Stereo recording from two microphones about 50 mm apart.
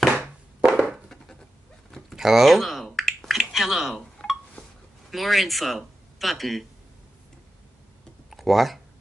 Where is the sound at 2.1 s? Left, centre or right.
Centre.